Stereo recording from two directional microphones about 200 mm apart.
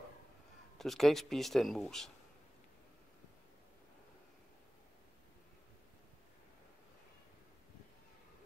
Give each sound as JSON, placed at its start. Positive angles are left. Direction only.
{"t": 0.7, "sound": "speech", "side_deg": 0}